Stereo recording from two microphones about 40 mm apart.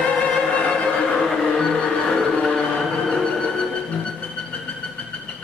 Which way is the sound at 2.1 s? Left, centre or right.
Centre.